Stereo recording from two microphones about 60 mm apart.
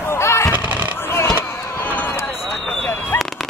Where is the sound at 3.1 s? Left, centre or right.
Left.